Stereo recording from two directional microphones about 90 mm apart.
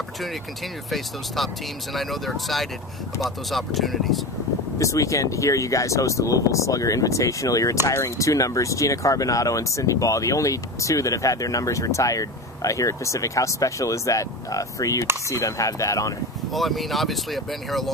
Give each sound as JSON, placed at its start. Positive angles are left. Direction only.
{"t": 0.8, "sound": "speech", "side_deg": 0}
{"t": 4.7, "sound": "speech", "side_deg": 35}
{"t": 16.5, "sound": "speech", "side_deg": 0}